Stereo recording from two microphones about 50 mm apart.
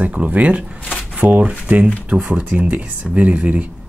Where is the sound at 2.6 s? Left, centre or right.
Right.